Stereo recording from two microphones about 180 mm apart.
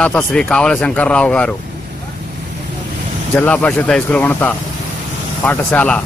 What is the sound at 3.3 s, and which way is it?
Speech, 10° left (ahead or behind).